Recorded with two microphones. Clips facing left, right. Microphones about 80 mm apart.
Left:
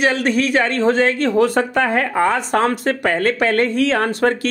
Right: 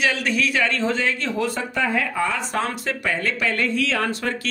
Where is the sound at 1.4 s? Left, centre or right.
Left.